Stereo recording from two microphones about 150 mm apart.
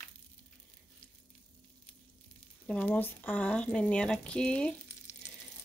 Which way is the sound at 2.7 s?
10° left (ahead or behind).